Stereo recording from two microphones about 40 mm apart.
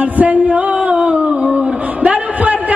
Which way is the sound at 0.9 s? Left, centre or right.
Right.